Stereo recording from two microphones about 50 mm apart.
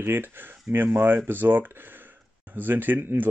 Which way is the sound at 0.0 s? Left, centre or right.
Right.